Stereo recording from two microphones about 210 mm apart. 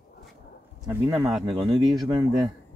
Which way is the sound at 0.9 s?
10° right (ahead or behind).